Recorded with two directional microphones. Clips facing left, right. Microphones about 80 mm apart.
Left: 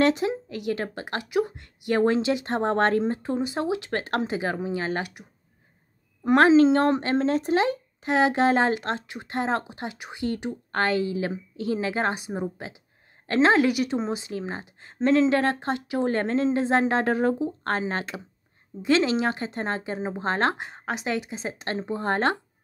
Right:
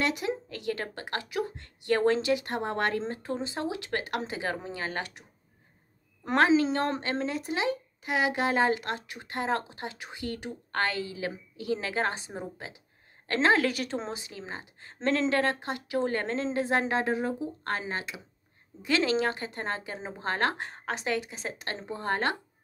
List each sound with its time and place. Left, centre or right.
0.0 s speech: left
3.0 s speech: left
6.3 s speech: left
7.2 s speech: left
8.0 s speech: left
13.7 s speech: centre
14.1 s speech: left
17.0 s speech: left
18.8 s speech: left